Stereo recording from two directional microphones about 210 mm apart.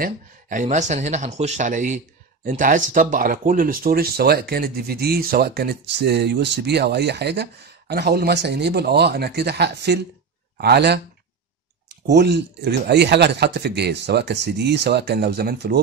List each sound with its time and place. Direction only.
0.0 s speech: 40° right (ahead or behind)
12.1 s speech: 50° right (ahead or behind)